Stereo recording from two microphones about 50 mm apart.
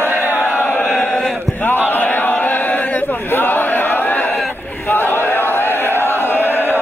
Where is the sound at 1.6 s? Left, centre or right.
Left.